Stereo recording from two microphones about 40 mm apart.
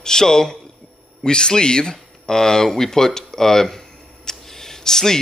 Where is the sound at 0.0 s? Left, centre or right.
Centre.